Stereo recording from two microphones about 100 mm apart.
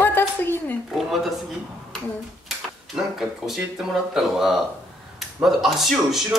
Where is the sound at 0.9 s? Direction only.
Centre (ahead or behind).